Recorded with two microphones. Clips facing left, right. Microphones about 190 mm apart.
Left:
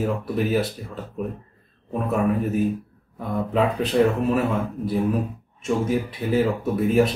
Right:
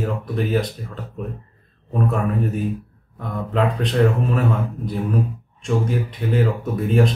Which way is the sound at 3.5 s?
5° left (ahead or behind).